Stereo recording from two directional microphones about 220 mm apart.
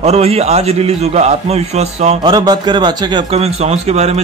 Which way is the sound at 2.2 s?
20° right (ahead or behind).